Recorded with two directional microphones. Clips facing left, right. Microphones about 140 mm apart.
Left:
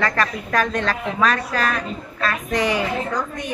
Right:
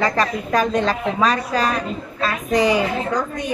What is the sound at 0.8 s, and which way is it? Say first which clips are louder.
Speech: right 2 dB; 30° right (ahead or behind).